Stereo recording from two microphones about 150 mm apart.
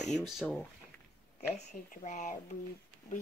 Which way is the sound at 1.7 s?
50° left (ahead or behind).